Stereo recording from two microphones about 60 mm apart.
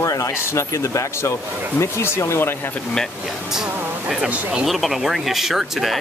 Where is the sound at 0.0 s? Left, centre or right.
Left.